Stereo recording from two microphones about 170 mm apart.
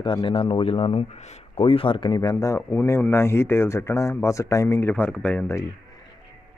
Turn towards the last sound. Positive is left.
turn(degrees=10)  # may be behind; listen again after turning